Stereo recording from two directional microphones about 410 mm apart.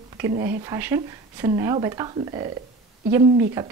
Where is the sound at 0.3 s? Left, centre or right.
Centre.